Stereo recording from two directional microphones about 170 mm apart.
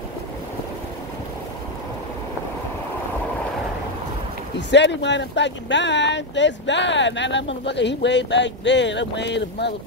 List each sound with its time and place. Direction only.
4.6 s speech: 90° left